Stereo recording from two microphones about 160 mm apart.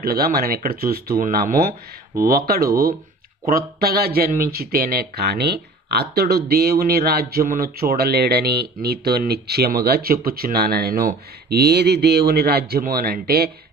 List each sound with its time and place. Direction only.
0.0 s speech: 75° right (ahead or behind)